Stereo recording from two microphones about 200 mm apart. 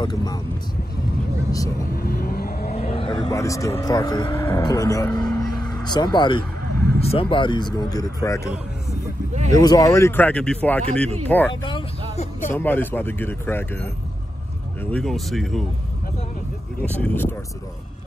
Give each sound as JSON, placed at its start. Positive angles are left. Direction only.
{"t": 0.0, "sound": "speech", "side_deg": 20}
{"t": 1.5, "sound": "speech", "side_deg": 15}
{"t": 2.0, "sound": "vehicle", "side_deg": 50}
{"t": 2.7, "sound": "vehicle", "side_deg": 30}
{"t": 3.7, "sound": "speech", "side_deg": 20}
{"t": 9.6, "sound": "speech", "side_deg": 20}
{"t": 16.8, "sound": "speech", "side_deg": 10}